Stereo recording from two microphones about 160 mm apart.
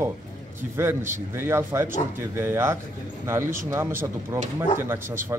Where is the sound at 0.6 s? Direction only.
15° right (ahead or behind).